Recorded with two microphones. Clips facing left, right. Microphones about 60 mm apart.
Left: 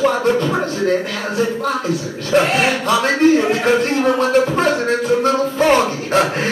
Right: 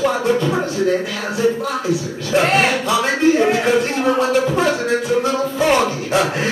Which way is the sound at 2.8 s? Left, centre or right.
Left.